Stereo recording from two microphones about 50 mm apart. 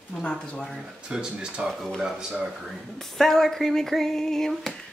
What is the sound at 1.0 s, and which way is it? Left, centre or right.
Speech, centre.